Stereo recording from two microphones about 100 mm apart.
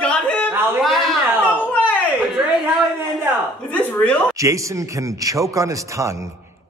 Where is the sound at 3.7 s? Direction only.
15° left (ahead or behind).